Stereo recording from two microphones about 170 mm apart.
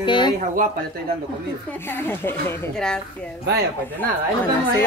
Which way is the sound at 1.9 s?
15° left (ahead or behind).